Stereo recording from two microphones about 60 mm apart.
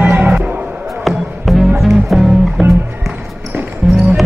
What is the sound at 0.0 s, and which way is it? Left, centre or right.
Music, right.